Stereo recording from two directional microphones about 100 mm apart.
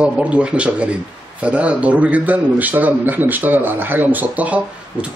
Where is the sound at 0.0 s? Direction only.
10° right (ahead or behind).